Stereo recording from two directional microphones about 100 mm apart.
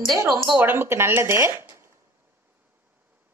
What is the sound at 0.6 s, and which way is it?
Speech, 20° right (ahead or behind).